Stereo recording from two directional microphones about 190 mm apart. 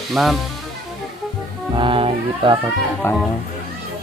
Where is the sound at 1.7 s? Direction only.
25° right (ahead or behind).